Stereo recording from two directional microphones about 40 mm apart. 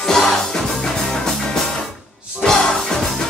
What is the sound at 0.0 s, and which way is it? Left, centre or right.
Music, centre.